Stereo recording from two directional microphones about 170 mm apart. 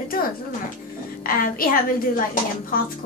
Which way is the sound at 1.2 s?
60° left (ahead or behind).